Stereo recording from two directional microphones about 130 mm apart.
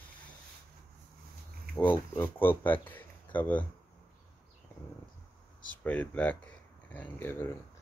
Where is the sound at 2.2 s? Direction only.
15° left (ahead or behind).